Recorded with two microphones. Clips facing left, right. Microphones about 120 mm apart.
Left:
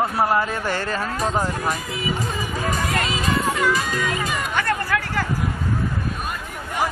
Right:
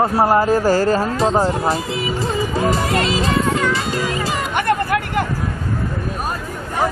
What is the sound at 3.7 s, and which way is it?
Music, 30° right (ahead or behind).